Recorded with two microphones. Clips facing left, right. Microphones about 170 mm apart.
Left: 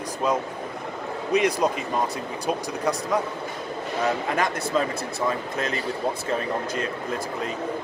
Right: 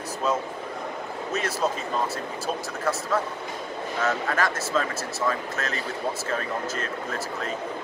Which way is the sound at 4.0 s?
15° left (ahead or behind).